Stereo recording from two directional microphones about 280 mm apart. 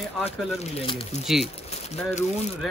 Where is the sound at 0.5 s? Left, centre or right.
Left.